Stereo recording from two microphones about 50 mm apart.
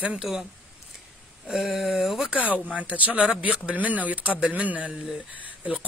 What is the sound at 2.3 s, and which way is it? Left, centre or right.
Speech, right.